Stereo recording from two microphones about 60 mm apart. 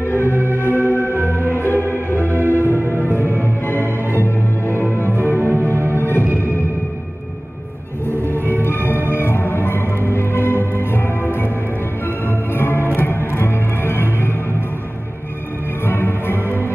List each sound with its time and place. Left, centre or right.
0.2 s music: right
0.6 s music: left
1.1 s music: right
1.5 s music: left
2.2 s music: right
3.0 s music: left
3.3 s music: left
4.8 s music: right
5.4 s music: left
6.2 s music: right
8.6 s music: left
15.8 s music: left